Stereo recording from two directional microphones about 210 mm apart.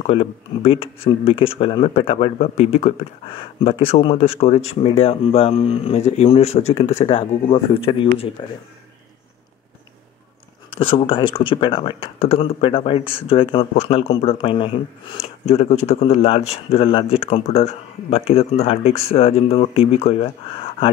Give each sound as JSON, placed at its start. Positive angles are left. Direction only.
{"t": 0.0, "sound": "speech", "side_deg": 30}
{"t": 10.7, "sound": "speech", "side_deg": 25}